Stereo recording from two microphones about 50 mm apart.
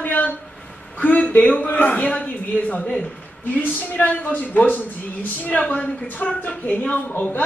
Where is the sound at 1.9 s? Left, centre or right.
Left.